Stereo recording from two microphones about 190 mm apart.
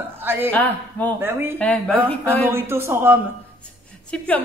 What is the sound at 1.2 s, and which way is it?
Speech, 10° right (ahead or behind).